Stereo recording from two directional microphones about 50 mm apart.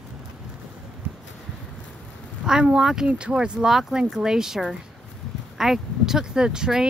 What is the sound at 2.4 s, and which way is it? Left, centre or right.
Speech, centre.